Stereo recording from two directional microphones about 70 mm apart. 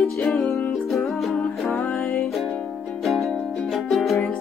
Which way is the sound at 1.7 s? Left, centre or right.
Left.